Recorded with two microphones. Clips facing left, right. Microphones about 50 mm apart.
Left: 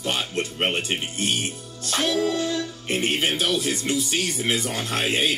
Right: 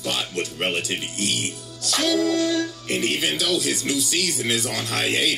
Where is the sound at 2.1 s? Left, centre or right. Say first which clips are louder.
Right 5 dB; right.